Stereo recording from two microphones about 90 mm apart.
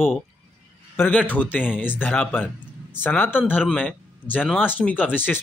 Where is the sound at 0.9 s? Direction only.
15° left (ahead or behind).